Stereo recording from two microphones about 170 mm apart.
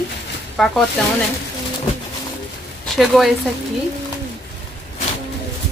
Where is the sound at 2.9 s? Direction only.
Centre (ahead or behind).